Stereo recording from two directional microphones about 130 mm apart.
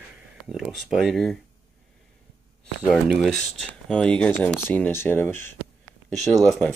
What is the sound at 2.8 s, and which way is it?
Speech, centre (ahead or behind).